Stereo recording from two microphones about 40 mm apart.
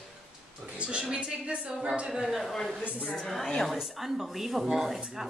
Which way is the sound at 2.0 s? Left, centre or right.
Centre.